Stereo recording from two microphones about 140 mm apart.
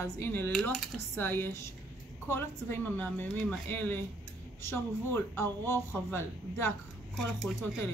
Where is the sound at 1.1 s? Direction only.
15° left (ahead or behind).